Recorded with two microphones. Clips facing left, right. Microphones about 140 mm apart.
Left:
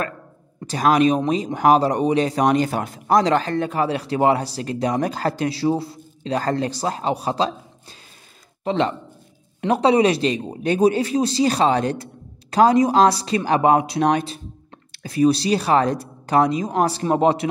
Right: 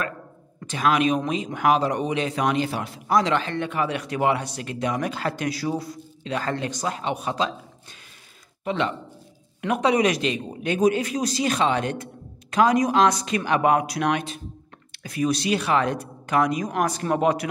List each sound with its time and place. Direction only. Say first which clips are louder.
0.6 s speech: left 5 dB; 40° left (ahead or behind)
8.6 s a man's voice: left 4 dB; 35° left (ahead or behind)